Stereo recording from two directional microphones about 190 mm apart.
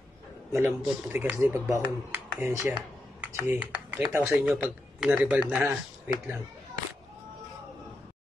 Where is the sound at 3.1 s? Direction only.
10° right (ahead or behind).